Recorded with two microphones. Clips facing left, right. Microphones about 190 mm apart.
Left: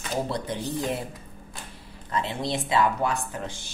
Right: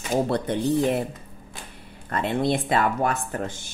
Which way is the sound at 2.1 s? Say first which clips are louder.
Right 5 dB; 55° right (ahead or behind).